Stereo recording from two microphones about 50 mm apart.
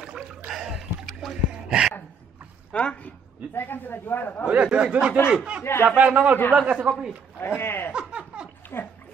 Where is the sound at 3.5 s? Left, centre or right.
Left.